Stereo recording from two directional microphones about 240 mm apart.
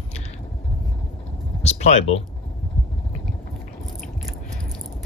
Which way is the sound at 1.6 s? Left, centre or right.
Left.